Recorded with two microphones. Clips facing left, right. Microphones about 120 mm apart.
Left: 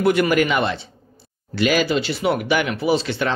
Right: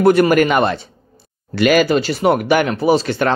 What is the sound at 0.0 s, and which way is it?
A man's voice, 40° right (ahead or behind).